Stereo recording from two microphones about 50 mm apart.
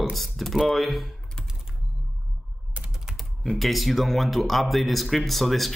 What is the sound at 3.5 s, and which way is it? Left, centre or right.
Speech, centre.